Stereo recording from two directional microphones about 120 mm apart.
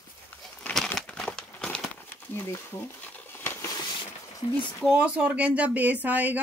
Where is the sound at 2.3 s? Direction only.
25° left (ahead or behind).